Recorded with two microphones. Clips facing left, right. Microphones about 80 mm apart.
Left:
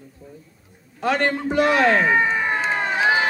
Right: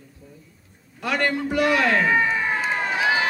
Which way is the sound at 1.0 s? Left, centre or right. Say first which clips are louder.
Left 3 dB; left.